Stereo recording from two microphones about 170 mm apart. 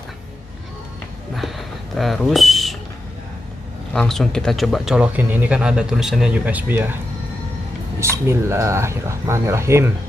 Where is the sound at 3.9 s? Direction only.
5° left (ahead or behind).